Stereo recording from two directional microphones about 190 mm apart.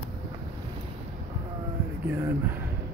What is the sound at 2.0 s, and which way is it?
Speech, 10° right (ahead or behind).